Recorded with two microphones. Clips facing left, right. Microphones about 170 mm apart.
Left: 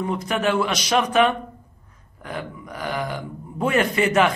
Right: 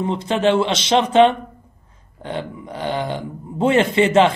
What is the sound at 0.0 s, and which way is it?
Speech, 25° right (ahead or behind).